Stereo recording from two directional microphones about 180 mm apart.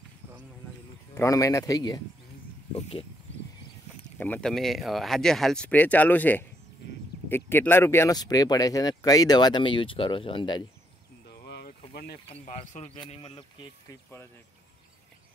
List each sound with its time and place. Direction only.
1.1 s speech: 15° left (ahead or behind)
2.7 s speech: 30° left (ahead or behind)
4.2 s speech: 5° left (ahead or behind); by 10.6 s 25° left (ahead or behind)
11.2 s a sound: 65° left (ahead or behind)
12.3 s speech: 35° left (ahead or behind)